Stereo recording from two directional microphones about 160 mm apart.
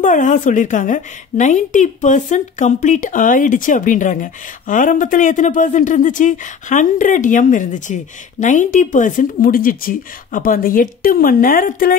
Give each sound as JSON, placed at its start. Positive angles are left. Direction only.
{"t": 0.0, "sound": "a woman's voice", "side_deg": 50}